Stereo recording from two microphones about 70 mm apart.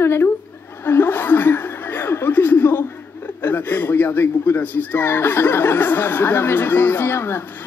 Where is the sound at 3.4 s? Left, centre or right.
Left.